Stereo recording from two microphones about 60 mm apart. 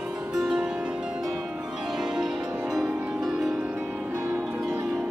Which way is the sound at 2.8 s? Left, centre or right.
Right.